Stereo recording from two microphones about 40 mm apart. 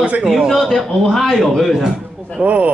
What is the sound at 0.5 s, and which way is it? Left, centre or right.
A man's voice, centre.